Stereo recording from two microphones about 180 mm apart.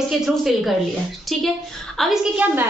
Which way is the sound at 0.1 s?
Centre (ahead or behind).